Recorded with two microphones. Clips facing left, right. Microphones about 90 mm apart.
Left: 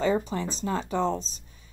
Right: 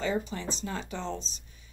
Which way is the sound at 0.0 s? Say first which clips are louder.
Left 5 dB; 40° left (ahead or behind).